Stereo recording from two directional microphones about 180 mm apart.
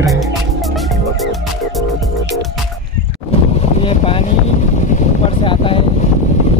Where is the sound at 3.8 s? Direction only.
30° left (ahead or behind).